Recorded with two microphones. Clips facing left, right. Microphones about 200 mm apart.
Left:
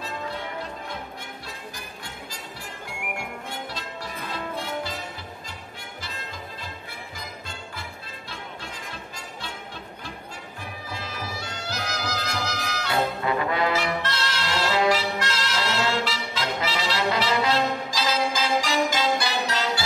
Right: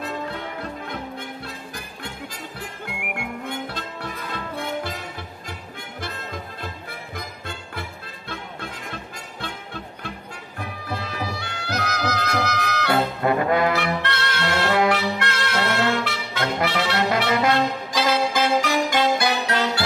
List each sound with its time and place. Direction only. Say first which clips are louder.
3.4 s music: right 4 dB; 55° right (ahead or behind)
8.3 s music: right 5 dB; 55° right (ahead or behind)
10.9 s music: right 6 dB; 60° right (ahead or behind)